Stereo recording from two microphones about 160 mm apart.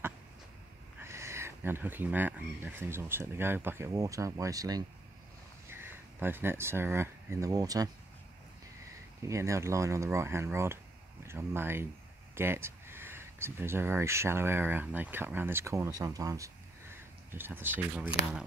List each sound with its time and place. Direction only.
1.0 s speech: 15° right (ahead or behind)
9.3 s speech: 20° right (ahead or behind)